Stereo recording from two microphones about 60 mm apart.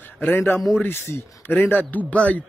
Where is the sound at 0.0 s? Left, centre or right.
Left.